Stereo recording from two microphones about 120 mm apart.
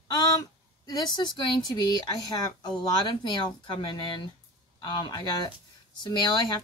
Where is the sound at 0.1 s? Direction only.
30° left (ahead or behind).